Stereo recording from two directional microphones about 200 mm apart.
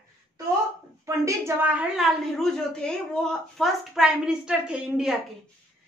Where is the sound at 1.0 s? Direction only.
15° right (ahead or behind).